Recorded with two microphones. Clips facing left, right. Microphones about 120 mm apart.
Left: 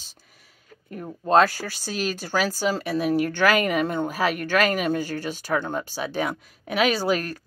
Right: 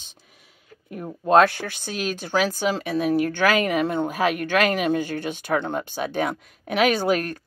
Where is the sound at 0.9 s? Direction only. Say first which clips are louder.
Right 2 dB; 10° right (ahead or behind).